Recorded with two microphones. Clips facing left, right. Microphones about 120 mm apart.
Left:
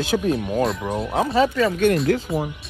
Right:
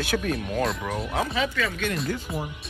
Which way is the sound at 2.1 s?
70° left (ahead or behind).